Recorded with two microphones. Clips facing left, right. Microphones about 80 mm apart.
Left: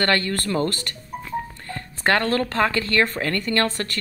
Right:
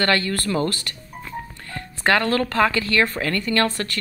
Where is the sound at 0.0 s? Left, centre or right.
Left.